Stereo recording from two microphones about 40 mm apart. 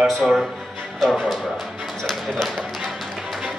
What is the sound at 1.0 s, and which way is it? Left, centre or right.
Speech, centre.